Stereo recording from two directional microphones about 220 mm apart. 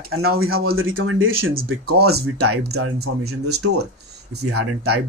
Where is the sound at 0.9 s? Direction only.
65° right (ahead or behind).